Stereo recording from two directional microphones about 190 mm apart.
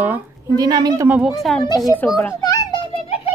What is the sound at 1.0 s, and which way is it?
Speech, 5° right (ahead or behind).